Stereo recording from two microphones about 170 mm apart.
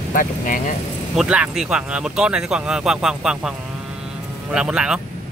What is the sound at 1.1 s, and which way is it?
Speech, 5° right (ahead or behind).